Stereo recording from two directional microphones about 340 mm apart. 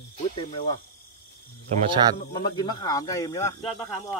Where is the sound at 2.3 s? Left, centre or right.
Centre.